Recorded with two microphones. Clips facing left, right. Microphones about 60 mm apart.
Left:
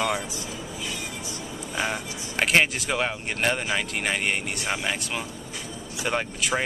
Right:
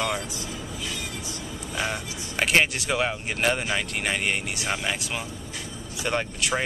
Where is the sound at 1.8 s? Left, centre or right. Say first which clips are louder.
Left 1 dB; centre.